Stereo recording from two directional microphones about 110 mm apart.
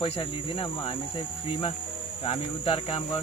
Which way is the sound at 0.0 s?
55° left (ahead or behind).